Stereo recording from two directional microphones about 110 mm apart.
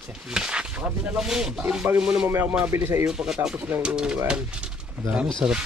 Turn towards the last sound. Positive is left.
turn(degrees=-10)  # may be behind; listen again after turning